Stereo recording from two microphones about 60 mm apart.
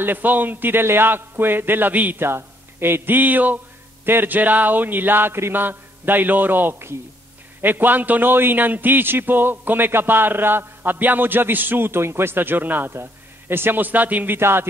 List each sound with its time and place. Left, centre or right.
0.0 s a man's voice: right
2.2 s a man's voice: right